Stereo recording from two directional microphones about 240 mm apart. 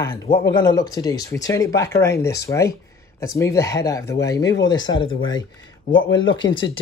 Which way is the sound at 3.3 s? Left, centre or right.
Centre.